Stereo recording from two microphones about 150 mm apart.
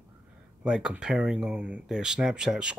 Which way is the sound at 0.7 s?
5° right (ahead or behind).